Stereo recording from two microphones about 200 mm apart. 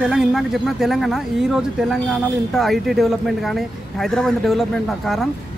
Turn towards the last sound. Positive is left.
turn(degrees=0)  # may be behind; listen again after turning